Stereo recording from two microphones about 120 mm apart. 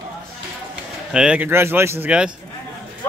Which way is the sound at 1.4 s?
20° right (ahead or behind).